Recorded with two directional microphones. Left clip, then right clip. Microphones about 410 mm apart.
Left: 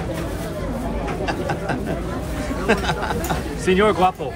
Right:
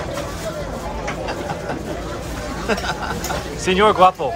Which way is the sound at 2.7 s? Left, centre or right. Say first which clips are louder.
Left 2 dB; centre.